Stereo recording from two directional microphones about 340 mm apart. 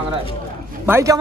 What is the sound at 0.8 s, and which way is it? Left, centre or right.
Speech, centre.